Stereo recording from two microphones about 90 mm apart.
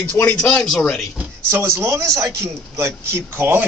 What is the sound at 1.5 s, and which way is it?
A man's voice, 30° right (ahead or behind).